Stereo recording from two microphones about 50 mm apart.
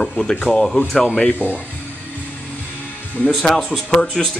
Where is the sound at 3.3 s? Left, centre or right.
Centre.